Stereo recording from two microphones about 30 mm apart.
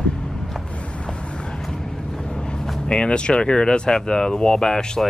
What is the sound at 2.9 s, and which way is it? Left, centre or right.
Speech, left.